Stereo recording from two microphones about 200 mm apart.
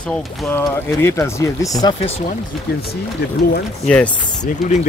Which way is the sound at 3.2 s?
55° left (ahead or behind).